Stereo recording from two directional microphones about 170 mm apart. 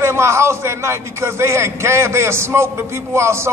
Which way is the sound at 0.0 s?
15° right (ahead or behind).